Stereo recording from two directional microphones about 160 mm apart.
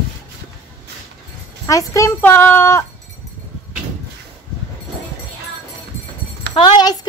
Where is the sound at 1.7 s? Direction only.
20° left (ahead or behind).